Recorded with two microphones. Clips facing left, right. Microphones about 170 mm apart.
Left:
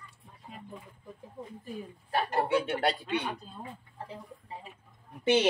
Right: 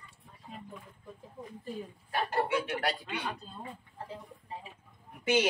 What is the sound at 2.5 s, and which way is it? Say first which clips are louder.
Speech: left 4 dB; 30° left (ahead or behind).